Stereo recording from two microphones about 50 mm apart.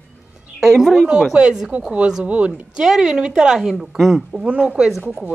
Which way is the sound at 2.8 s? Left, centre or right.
Centre.